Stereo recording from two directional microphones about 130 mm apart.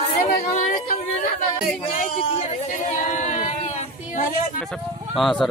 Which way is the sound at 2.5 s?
75° left (ahead or behind).